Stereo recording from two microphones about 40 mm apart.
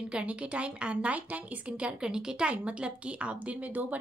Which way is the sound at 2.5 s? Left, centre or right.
Right.